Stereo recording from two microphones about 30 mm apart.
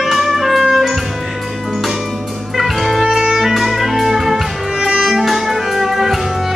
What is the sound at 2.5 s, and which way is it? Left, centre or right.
Music, centre.